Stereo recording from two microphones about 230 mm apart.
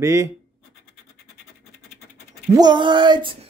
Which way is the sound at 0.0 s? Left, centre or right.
Centre.